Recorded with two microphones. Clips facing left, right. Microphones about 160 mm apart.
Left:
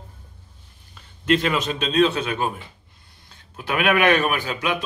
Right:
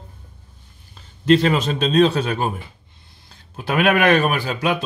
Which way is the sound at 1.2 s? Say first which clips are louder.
Right 5 dB; 35° right (ahead or behind).